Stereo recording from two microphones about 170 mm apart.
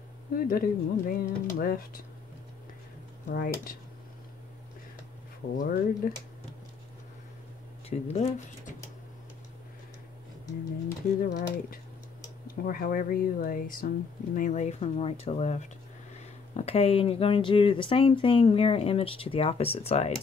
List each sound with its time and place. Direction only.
0.3 s speech: 60° left (ahead or behind)
3.3 s speech: 55° left (ahead or behind)
5.6 s speech: 55° left (ahead or behind)
7.9 s speech: 45° left (ahead or behind)
11.2 s speech: 55° left (ahead or behind); by 20.1 s 35° left (ahead or behind)